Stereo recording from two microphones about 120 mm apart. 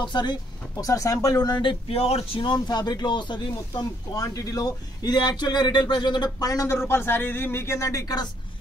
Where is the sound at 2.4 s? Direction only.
35° left (ahead or behind).